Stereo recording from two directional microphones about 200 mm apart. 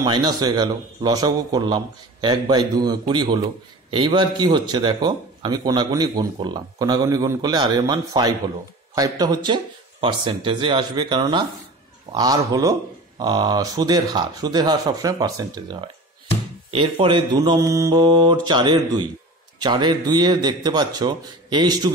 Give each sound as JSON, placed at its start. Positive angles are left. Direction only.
{"t": 0.0, "sound": "speech", "side_deg": -20}